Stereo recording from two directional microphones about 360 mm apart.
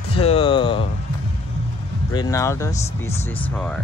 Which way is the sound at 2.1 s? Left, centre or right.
Centre.